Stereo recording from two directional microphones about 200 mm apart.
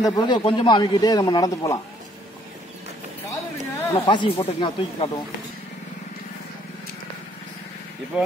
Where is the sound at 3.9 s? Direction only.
25° left (ahead or behind).